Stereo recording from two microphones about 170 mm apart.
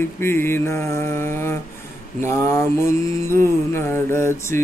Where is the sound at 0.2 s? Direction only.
15° left (ahead or behind).